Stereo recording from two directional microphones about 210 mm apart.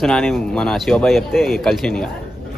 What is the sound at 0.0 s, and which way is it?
Speech, 5° left (ahead or behind).